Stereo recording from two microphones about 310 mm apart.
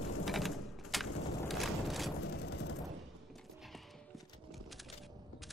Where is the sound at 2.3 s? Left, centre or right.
Left.